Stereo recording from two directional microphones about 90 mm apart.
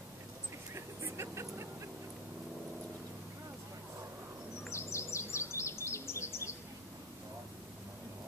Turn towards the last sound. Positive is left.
turn(degrees=30)  # may be behind; listen again after turning